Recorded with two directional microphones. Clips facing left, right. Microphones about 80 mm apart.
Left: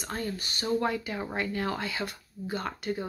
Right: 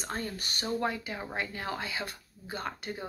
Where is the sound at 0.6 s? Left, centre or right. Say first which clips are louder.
Left 4 dB; right.